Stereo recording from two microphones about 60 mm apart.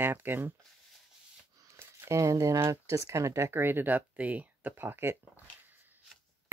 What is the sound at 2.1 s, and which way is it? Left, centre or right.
Speech, right.